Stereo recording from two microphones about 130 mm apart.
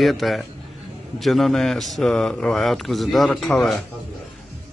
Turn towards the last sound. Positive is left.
turn(degrees=0)  # may be behind; listen again after turning